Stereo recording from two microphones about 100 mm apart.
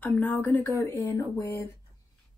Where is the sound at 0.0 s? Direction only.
20° left (ahead or behind).